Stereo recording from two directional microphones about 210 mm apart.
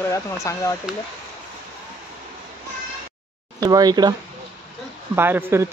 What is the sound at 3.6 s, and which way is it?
Speech, 20° right (ahead or behind).